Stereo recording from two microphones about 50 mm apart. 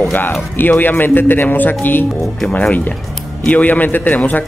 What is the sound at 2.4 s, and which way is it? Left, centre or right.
A man's voice, left.